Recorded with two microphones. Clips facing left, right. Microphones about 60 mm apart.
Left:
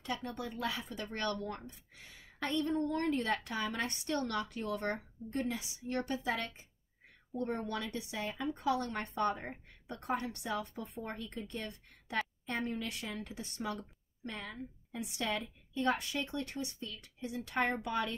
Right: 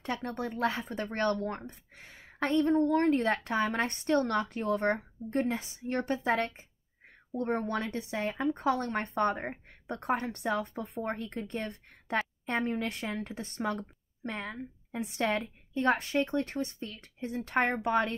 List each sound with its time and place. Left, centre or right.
0.0 s speech: right